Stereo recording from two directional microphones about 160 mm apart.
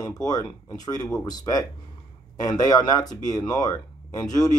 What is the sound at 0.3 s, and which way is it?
Speech, 25° left (ahead or behind).